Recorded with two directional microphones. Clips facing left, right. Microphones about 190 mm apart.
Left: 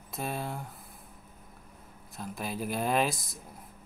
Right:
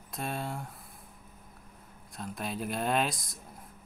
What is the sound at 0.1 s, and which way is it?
Speech, centre (ahead or behind).